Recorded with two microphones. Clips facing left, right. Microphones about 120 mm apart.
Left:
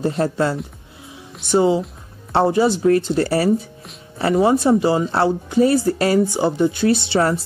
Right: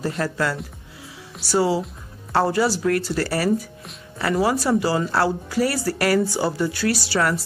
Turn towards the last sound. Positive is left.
turn(degrees=25)  # may be behind; listen again after turning